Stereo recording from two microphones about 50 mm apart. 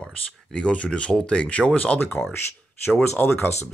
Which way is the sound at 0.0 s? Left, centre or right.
Centre.